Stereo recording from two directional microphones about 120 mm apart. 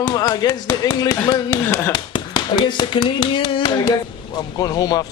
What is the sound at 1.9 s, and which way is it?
Speech, 40° left (ahead or behind).